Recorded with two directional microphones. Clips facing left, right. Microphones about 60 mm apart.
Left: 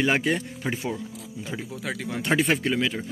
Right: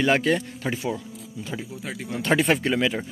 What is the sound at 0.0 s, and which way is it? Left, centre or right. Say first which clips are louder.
Speech: right 2 dB; centre.